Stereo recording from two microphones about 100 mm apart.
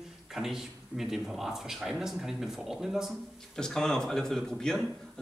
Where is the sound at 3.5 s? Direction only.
5° left (ahead or behind).